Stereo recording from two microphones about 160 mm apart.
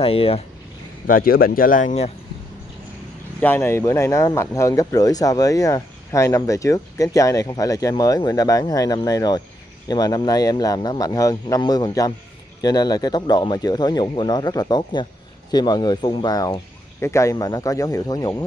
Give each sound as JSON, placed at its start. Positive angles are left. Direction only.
{"t": 0.0, "sound": "speech", "side_deg": 35}
{"t": 1.0, "sound": "a man's voice", "side_deg": 65}
{"t": 3.3, "sound": "speech", "side_deg": 10}